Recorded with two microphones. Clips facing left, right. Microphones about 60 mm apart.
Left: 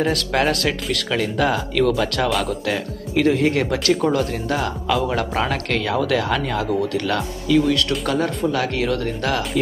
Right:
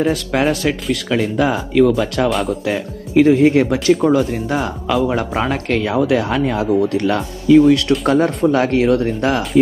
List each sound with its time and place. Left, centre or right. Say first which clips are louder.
0.0 s speech: right 3 dB; centre
7.1 s speech: right 7 dB; right